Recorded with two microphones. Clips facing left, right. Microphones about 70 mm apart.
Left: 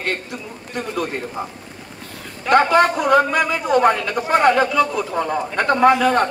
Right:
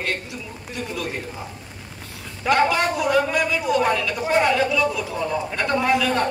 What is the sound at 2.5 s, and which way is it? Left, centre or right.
A man's voice, left.